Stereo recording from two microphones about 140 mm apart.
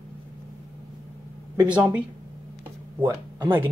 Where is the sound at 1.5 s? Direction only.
10° right (ahead or behind).